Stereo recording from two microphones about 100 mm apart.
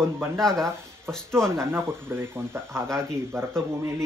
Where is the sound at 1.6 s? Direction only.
20° right (ahead or behind).